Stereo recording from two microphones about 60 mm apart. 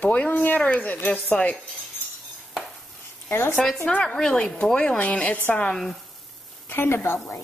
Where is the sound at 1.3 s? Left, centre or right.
Centre.